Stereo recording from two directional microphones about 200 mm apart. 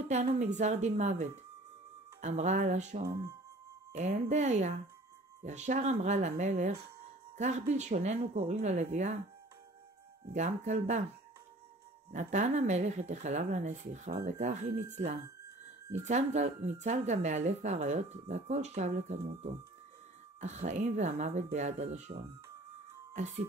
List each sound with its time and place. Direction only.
0.1 s speech: 35° right (ahead or behind)
10.3 s speech: 35° right (ahead or behind)
12.1 s speech: 35° right (ahead or behind)